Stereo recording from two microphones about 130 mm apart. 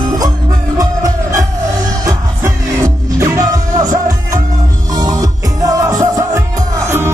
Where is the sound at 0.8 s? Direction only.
25° right (ahead or behind).